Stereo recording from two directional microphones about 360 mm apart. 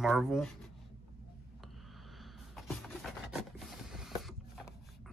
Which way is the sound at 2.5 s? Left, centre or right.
Centre.